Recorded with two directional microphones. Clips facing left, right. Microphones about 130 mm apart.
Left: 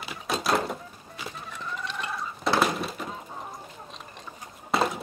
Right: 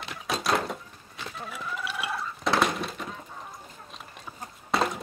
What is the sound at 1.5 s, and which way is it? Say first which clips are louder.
Chicken: right 1 dB; 5° right (ahead or behind).